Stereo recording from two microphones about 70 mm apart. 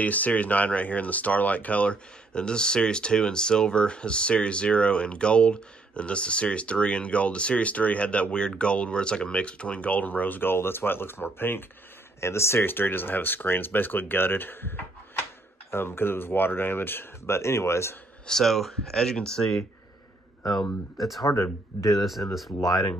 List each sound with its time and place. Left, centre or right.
0.0 s speech: left
18.2 s speech: centre
21.4 s speech: left